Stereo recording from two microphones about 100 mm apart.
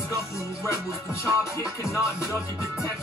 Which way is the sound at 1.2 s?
30° left (ahead or behind).